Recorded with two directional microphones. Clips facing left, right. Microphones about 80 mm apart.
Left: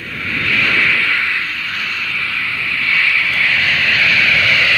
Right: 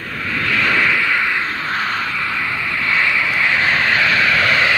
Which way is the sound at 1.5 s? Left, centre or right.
Right.